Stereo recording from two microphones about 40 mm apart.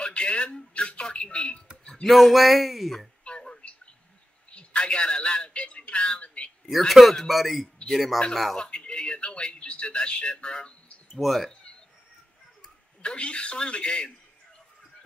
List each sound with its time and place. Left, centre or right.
0.0 s a sound: left
0.7 s speech: left
2.0 s speech: centre
3.3 s a sound: left
6.9 s speech: centre
8.5 s speech: left
11.1 s speech: centre
13.0 s speech: left